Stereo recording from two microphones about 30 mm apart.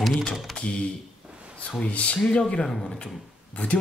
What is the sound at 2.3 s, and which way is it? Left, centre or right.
Speech, left.